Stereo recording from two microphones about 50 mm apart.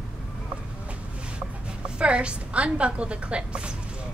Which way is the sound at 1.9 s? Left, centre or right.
Right.